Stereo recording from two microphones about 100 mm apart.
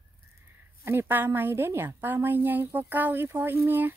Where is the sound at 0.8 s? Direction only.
20° right (ahead or behind).